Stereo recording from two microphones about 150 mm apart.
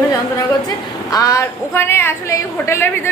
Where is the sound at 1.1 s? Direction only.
20° left (ahead or behind).